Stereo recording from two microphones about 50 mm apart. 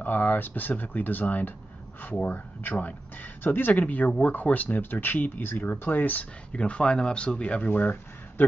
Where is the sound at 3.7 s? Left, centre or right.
Left.